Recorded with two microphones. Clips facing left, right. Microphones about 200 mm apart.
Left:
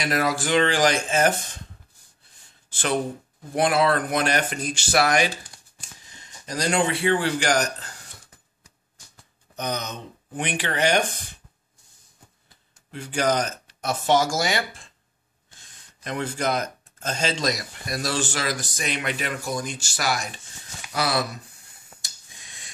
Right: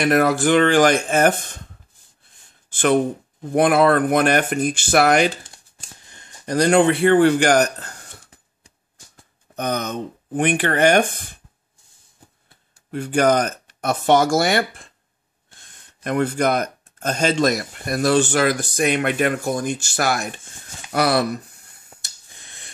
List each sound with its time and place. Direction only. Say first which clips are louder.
0.0 s speech: right 8 dB; 55° right (ahead or behind)
2.7 s a man's voice: right 8 dB; 55° right (ahead or behind)
9.1 s speech: right 6 dB; 55° right (ahead or behind)
12.9 s speech: right 6 dB; 55° right (ahead or behind)
22.0 s a sound: right 1 dB; 60° right (ahead or behind)